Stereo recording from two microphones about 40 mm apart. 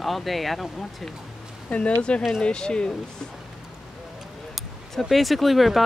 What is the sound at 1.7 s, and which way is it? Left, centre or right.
Speech, left.